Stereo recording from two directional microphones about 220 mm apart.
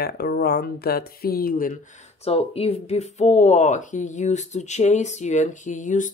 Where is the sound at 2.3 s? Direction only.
25° left (ahead or behind).